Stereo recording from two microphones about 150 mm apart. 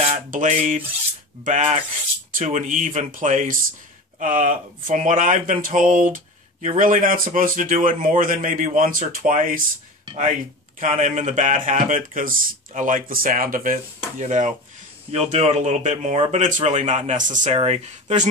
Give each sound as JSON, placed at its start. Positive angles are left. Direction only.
{"t": 0.3, "sound": "speech", "side_deg": -60}
{"t": 10.8, "sound": "speech", "side_deg": -50}
{"t": 15.0, "sound": "speech", "side_deg": -45}
{"t": 17.6, "sound": "speech", "side_deg": -45}